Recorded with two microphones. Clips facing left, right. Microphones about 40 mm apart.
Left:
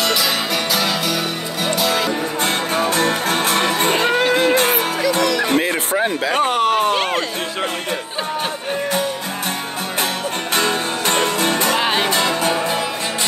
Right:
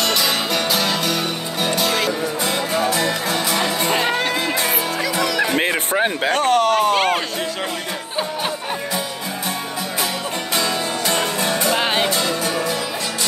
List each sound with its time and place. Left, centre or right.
0.0 s music: centre
2.4 s music: left
4.1 s music: centre
4.6 s music: left
5.2 s music: centre
6.3 s a sound: centre
10.5 s music: left
11.8 s music: centre
12.1 s music: left